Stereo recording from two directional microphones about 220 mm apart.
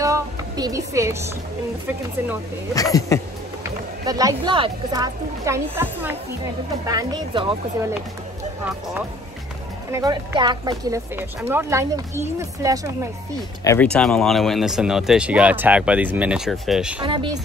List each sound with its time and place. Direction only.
0.0 s a woman's voice: 15° right (ahead or behind)
2.7 s speech: 15° left (ahead or behind)
3.6 s speech: 15° right (ahead or behind)
9.8 s speech: 15° right (ahead or behind)
13.7 s speech: 5° left (ahead or behind)
17.0 s speech: 20° right (ahead or behind)